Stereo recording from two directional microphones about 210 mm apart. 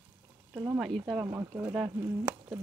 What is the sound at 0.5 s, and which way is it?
Speech, 10° right (ahead or behind).